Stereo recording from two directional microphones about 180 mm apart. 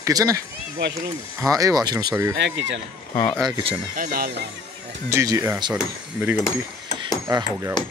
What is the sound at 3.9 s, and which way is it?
Speech, 50° right (ahead or behind).